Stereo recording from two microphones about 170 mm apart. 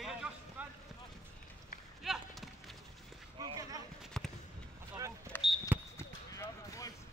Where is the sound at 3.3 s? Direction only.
25° right (ahead or behind).